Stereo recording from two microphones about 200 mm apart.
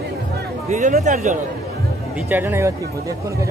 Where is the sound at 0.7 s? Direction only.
35° right (ahead or behind).